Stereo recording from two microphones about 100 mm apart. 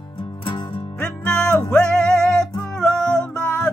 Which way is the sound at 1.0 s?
10° left (ahead or behind).